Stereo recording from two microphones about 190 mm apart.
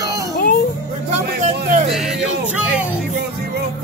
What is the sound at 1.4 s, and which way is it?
Speech, 40° right (ahead or behind).